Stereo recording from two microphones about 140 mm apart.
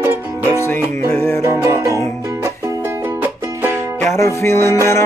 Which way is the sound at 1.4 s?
20° right (ahead or behind).